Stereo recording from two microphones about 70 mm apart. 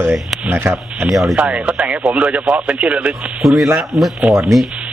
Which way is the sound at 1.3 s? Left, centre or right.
Centre.